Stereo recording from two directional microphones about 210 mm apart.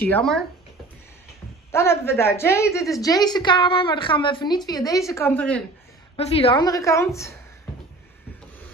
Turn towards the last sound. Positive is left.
turn(degrees=15)  # may be behind; listen again after turning